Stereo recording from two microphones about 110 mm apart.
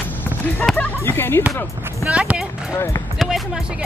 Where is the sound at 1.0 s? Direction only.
20° left (ahead or behind).